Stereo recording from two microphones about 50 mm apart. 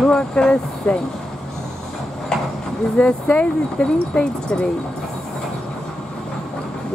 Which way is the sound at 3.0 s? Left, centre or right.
Centre.